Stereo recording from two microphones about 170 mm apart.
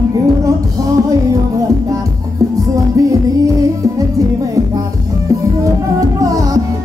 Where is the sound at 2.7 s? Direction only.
20° right (ahead or behind).